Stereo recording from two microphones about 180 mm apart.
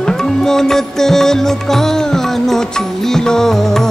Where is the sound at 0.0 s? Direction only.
5° left (ahead or behind).